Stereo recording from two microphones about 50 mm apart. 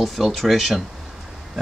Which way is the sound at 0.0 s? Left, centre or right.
Centre.